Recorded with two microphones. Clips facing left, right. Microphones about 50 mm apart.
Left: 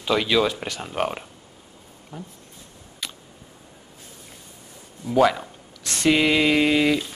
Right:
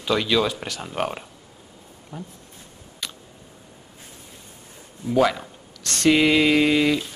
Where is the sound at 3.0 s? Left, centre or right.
Centre.